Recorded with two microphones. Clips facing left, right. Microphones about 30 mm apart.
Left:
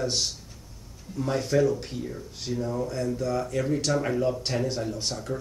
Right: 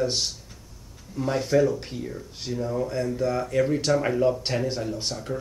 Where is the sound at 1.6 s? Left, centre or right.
Centre.